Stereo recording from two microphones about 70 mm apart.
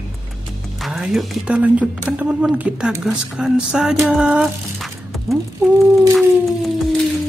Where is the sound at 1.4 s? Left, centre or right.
Centre.